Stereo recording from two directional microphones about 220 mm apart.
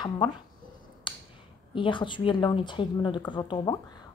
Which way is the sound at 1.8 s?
20° left (ahead or behind).